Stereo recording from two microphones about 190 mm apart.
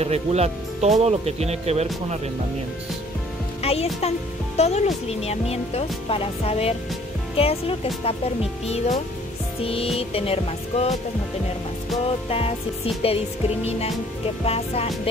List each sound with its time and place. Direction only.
0.0 s speech: 35° right (ahead or behind)
3.6 s speech: 35° left (ahead or behind)
12.3 s speech: 30° left (ahead or behind)